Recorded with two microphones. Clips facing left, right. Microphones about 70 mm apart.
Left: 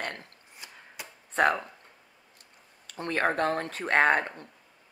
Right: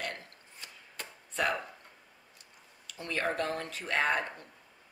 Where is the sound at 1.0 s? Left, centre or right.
Centre.